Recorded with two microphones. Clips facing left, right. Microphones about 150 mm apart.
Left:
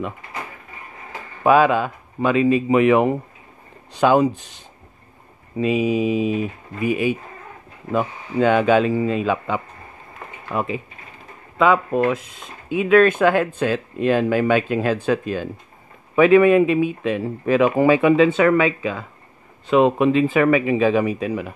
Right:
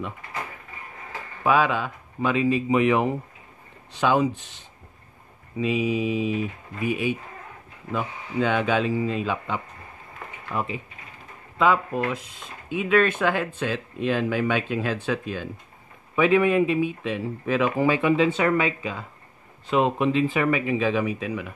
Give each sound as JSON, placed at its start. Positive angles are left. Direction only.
{"t": 1.4, "sound": "speech", "side_deg": 50}
{"t": 6.8, "sound": "speech", "side_deg": 65}
{"t": 7.9, "sound": "speech", "side_deg": 50}
{"t": 11.5, "sound": "speech", "side_deg": 90}
{"t": 12.7, "sound": "speech", "side_deg": 50}
{"t": 16.2, "sound": "speech", "side_deg": 75}
{"t": 20.1, "sound": "speech", "side_deg": 55}